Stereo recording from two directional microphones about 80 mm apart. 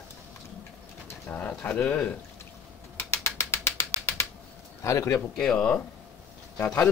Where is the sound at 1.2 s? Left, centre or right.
Left.